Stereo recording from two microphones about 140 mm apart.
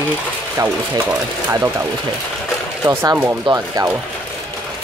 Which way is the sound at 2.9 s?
15° right (ahead or behind).